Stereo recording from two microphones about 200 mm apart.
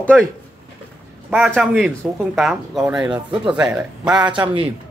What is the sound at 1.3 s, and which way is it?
A man's voice, 5° right (ahead or behind).